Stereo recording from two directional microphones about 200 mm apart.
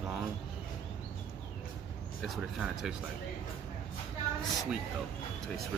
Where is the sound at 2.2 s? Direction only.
Centre (ahead or behind).